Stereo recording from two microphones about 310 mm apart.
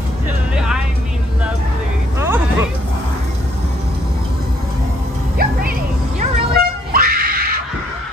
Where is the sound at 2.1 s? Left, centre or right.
Centre.